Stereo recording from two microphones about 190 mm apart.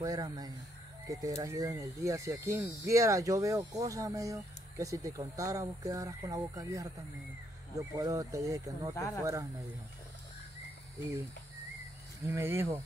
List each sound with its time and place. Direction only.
0.0 s speech: 20° right (ahead or behind)
8.9 s speech: 15° left (ahead or behind)
9.2 s speech: 15° right (ahead or behind)
12.3 s speech: 15° right (ahead or behind)